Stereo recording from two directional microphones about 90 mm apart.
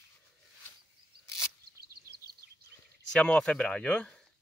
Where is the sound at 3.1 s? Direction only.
10° left (ahead or behind).